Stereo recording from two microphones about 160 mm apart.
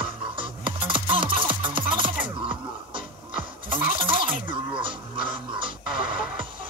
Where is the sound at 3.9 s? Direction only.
30° right (ahead or behind).